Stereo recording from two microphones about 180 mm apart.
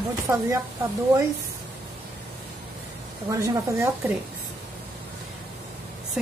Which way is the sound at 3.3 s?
15° right (ahead or behind).